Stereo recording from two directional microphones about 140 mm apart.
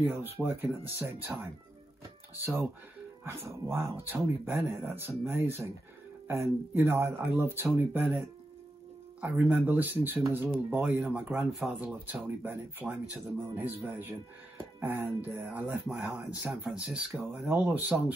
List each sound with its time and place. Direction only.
0.0 s speech: 15° right (ahead or behind)
9.2 s speech: 15° right (ahead or behind)